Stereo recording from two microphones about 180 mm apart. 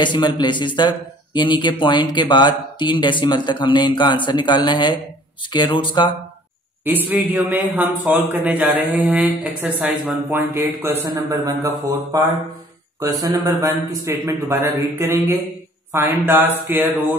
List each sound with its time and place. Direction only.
0.0 s a man's voice: 25° left (ahead or behind)
7.1 s speech: 10° right (ahead or behind)